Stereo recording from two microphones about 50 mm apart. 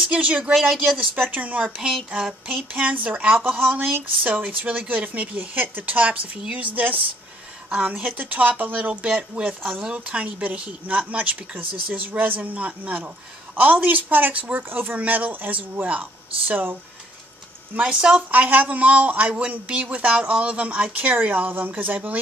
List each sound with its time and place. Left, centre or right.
0.0 s speech: right
0.6 s speech: centre
1.3 s speech: right
5.5 s speech: right
18.3 s speech: right
19.3 s speech: right